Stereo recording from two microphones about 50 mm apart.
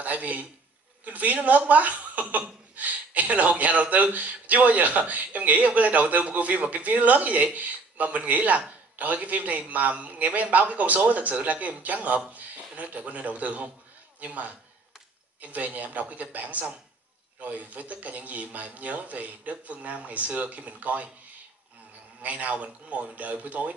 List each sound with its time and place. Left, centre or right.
0.0 s speech: right
22.2 s speech: right